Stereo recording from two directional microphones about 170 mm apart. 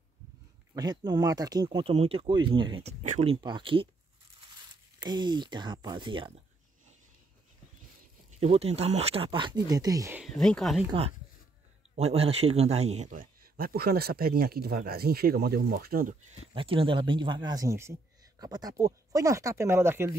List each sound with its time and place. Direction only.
0.7 s speech: 25° right (ahead or behind); by 3.3 s 40° right (ahead or behind)
3.3 s speech: 25° right (ahead or behind)
5.0 s speech: 25° right (ahead or behind)
8.3 s speech: 40° right (ahead or behind); by 10.1 s 20° right (ahead or behind)
10.1 s speech: centre (ahead or behind)
10.9 s speech: 35° right (ahead or behind)
13.6 s speech: 60° right (ahead or behind)
16.5 s speech: 30° right (ahead or behind); by 20.2 s 15° right (ahead or behind)